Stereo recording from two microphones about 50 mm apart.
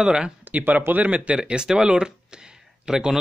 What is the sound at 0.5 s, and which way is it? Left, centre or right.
Speech, right.